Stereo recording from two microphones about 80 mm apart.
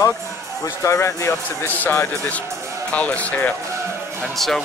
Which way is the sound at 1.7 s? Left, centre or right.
Left.